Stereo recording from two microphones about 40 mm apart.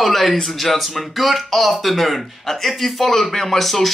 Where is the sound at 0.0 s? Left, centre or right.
Centre.